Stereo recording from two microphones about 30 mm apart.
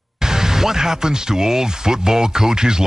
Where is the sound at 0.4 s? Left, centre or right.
Centre.